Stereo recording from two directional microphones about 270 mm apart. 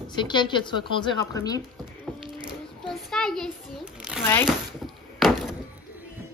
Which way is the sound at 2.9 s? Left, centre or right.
Centre.